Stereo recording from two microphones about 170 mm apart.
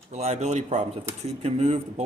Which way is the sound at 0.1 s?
40° right (ahead or behind).